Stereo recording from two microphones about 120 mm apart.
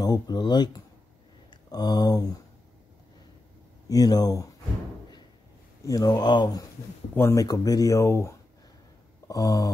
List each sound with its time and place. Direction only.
0.0 s speech: 35° left (ahead or behind)
3.9 s speech: 30° left (ahead or behind)
5.9 s speech: 30° left (ahead or behind)
7.2 s speech: 20° left (ahead or behind)